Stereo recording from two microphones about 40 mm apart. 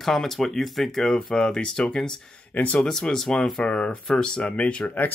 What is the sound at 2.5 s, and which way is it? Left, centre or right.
Speech, left.